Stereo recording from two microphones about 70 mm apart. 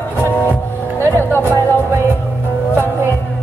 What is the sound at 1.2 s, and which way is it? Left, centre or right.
Music, left.